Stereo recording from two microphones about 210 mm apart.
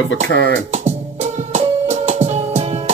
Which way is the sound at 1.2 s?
35° right (ahead or behind).